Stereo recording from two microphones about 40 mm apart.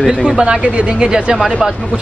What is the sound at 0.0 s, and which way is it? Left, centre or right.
Speech, centre.